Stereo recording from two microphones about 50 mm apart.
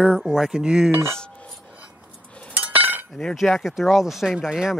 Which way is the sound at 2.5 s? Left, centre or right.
Right.